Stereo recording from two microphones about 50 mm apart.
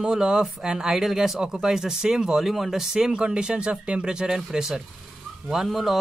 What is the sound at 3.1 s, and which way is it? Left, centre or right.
Speech, centre.